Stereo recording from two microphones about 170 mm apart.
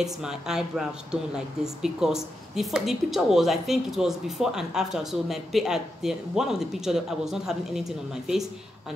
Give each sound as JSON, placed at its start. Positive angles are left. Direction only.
{"t": 0.0, "sound": "a woman's voice", "side_deg": -5}